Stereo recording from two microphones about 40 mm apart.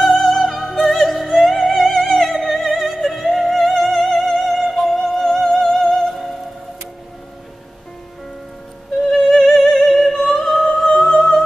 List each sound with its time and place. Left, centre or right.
0.0 s music: centre
9.1 s music: centre